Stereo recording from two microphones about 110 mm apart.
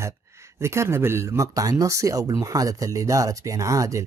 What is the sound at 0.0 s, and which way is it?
Speech, 25° right (ahead or behind).